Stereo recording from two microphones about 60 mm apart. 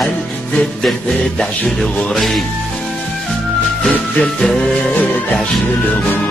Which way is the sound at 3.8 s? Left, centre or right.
Centre.